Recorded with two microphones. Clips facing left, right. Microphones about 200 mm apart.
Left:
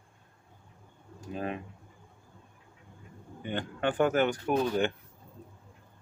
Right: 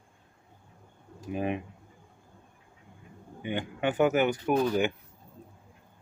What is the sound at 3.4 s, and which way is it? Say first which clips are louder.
Speech: right 1 dB; 10° right (ahead or behind).